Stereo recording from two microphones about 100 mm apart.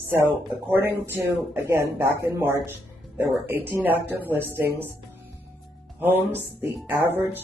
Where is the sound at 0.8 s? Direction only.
20° right (ahead or behind).